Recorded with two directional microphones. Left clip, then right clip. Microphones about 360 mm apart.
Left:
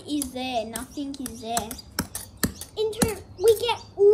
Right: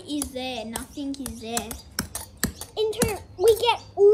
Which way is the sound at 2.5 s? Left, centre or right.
Centre.